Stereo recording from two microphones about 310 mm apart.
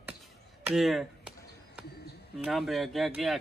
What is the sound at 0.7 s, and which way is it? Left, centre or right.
Speech, centre.